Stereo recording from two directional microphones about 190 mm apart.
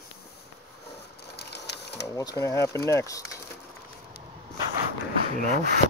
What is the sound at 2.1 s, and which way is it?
Speech, 15° left (ahead or behind).